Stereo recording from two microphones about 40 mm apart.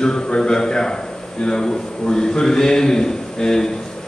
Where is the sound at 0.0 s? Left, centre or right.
Centre.